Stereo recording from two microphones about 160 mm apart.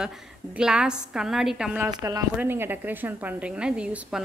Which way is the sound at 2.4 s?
15° right (ahead or behind).